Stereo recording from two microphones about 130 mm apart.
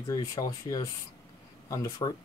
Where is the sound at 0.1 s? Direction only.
30° left (ahead or behind).